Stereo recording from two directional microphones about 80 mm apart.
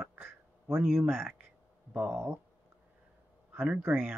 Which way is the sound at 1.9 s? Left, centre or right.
Right.